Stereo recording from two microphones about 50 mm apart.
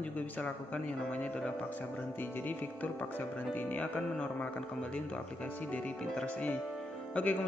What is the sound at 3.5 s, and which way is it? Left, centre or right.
Speech, left.